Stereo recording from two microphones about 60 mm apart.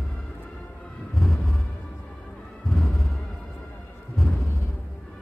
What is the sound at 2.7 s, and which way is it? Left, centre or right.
Music, centre.